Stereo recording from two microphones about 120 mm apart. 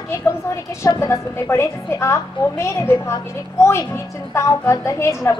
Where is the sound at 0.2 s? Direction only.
25° left (ahead or behind).